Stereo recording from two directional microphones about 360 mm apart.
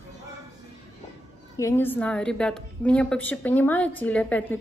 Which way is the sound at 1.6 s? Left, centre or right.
Centre.